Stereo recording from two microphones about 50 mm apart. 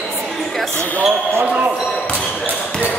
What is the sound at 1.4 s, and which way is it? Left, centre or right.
Basketball bounce, centre.